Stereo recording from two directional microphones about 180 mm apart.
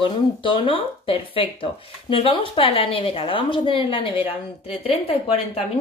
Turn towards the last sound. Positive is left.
turn(degrees=35)  # may be behind; listen again after turning